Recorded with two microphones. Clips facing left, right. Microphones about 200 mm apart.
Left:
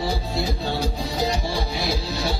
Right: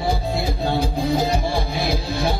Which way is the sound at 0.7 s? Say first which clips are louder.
Right 5 dB; 55° right (ahead or behind).